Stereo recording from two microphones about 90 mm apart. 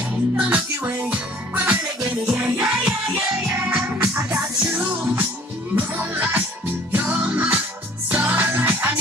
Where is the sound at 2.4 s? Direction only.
10° right (ahead or behind).